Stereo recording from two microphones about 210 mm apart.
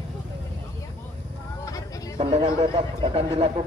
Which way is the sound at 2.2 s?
30° right (ahead or behind).